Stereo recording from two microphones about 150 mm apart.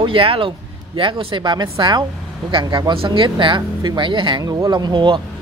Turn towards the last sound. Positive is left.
turn(degrees=-30)  # may be behind; listen again after turning